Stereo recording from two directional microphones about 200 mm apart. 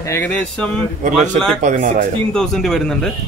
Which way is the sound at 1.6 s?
40° right (ahead or behind).